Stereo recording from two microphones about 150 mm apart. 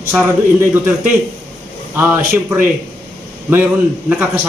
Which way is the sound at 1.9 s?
15° right (ahead or behind).